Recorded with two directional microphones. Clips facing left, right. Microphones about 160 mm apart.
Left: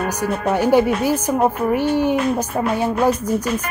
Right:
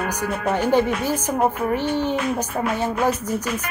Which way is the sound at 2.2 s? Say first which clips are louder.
Left 4 dB; 35° left (ahead or behind).